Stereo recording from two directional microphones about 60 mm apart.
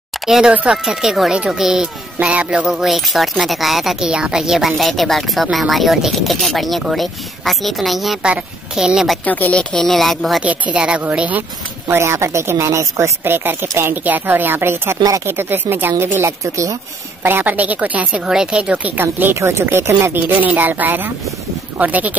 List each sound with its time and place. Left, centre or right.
0.8 s a woman's voice: centre
2.1 s a woman's voice: centre
2.6 s speech: centre
8.2 s a woman's voice: centre
9.2 s a woman's voice: left
9.6 s speech: centre
10.4 s a woman's voice: right
11.9 s a woman's voice: right
13.2 s a woman's voice: right
17.6 s a woman's voice: right
18.2 s a woman's voice: centre
18.9 s a woman's voice: right
19.4 s a woman's voice: right